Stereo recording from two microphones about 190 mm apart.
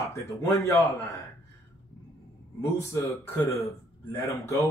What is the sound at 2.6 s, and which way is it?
Speech, 15° left (ahead or behind).